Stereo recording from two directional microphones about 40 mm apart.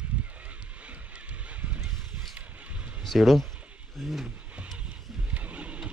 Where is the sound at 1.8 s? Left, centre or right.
Centre.